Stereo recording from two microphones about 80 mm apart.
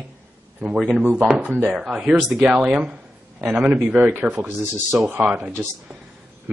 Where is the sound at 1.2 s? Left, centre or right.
Centre.